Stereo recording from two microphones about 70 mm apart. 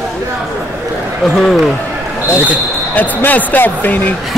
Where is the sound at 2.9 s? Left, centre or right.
Left.